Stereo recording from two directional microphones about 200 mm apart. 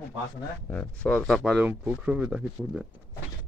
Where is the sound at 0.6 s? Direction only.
5° left (ahead or behind).